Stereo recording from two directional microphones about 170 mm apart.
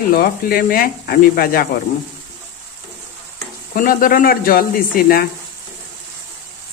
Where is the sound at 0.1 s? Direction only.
55° left (ahead or behind).